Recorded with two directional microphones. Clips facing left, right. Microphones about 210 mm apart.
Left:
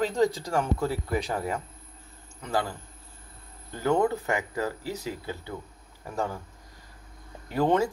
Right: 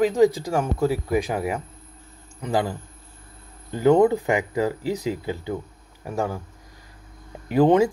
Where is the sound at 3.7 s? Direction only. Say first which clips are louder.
Right 8 dB; 15° right (ahead or behind).